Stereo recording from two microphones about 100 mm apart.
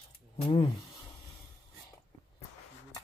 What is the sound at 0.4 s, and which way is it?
Speech, 60° left (ahead or behind).